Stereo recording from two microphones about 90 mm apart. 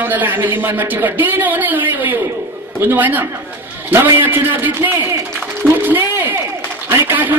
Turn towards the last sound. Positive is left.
turn(degrees=-25)  # may be behind; listen again after turning